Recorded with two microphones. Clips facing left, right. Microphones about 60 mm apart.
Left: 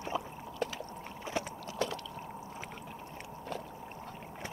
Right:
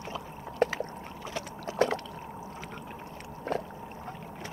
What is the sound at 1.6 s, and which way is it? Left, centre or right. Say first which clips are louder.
Liquid: right 8 dB; right.